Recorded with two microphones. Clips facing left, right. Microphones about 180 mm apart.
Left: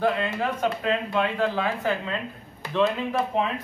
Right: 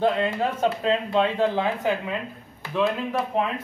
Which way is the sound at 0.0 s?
25° right (ahead or behind).